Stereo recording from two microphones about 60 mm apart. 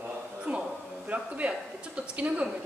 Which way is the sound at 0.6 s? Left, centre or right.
Right.